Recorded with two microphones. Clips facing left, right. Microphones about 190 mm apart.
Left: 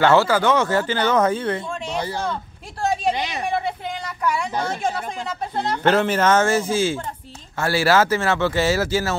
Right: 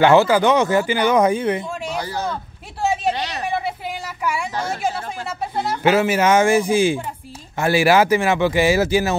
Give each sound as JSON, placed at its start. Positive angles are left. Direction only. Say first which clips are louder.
{"t": 0.0, "sound": "speech", "louder": "right 3 dB", "side_deg": -15}
{"t": 2.0, "sound": "a man's voice", "louder": "left 2 dB", "side_deg": 25}
{"t": 3.4, "sound": "a sound", "louder": "even", "side_deg": -5}
{"t": 4.6, "sound": "speech", "louder": "right 1 dB", "side_deg": -5}